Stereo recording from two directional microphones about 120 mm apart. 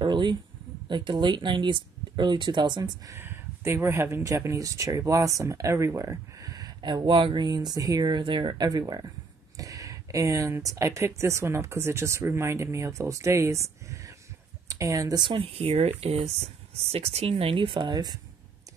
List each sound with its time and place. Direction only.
0.0 s a sound: 40° right (ahead or behind)
0.8 s speech: 40° right (ahead or behind)
3.2 s speech: 20° right (ahead or behind)
15.3 s speech: 55° right (ahead or behind); by 18.1 s 40° right (ahead or behind)